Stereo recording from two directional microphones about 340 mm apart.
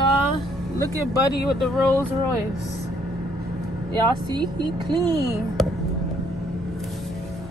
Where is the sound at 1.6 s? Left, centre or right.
Centre.